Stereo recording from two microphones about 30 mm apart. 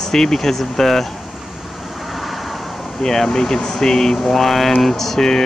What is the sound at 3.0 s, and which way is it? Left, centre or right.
Speech, centre.